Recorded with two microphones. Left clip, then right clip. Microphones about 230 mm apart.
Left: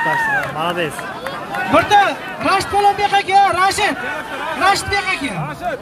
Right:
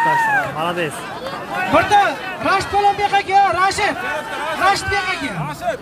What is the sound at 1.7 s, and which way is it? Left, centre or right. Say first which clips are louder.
A man's voice: left 1 dB; left.